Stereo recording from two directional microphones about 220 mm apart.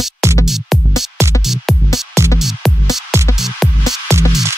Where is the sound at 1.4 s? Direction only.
Centre (ahead or behind).